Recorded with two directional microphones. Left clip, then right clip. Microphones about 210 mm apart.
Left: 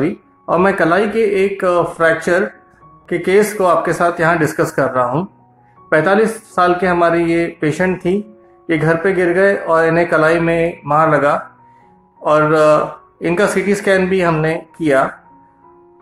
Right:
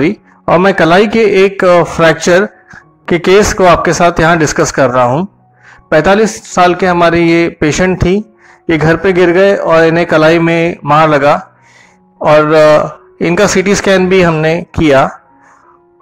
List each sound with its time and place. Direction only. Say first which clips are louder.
0.0 s speech: right 7 dB; 40° right (ahead or behind)